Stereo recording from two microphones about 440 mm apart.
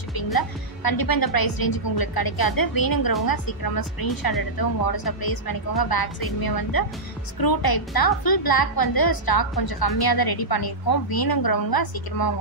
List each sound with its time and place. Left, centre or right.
0.1 s a woman's voice: left